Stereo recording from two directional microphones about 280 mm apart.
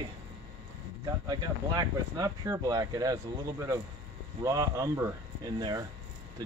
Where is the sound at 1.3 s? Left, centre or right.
Centre.